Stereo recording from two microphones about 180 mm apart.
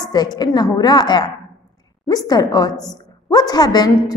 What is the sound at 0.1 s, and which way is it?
A woman's voice, 25° left (ahead or behind).